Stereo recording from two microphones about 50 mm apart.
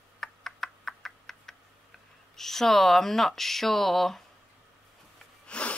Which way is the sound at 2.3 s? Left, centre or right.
Centre.